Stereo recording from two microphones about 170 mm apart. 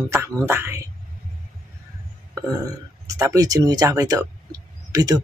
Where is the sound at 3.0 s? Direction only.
20° right (ahead or behind).